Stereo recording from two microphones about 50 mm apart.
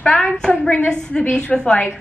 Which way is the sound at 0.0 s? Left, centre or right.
Centre.